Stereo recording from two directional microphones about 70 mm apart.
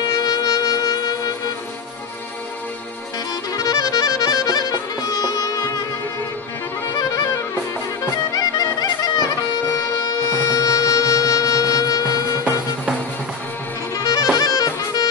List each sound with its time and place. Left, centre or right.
0.0 s music: left
3.5 s music: left
6.9 s music: left
8.3 s music: left
10.0 s music: left
14.3 s music: left